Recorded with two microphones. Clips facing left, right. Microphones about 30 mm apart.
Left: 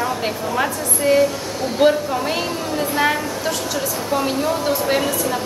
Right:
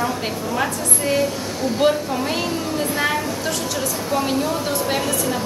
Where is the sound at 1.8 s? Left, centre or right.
Left.